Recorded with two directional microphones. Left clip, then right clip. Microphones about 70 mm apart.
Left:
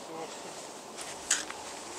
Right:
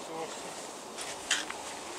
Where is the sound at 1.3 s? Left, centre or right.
Left.